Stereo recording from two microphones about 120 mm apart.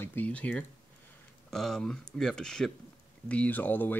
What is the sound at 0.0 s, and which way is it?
Speech, 15° left (ahead or behind).